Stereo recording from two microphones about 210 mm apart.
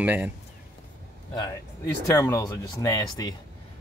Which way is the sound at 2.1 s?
15° left (ahead or behind).